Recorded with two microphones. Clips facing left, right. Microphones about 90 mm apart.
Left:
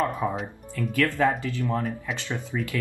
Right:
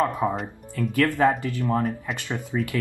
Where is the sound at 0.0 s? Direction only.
20° right (ahead or behind).